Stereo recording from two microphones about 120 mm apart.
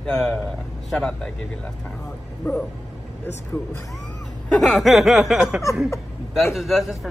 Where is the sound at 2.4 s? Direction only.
20° left (ahead or behind).